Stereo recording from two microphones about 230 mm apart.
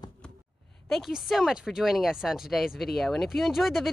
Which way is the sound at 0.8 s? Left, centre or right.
Centre.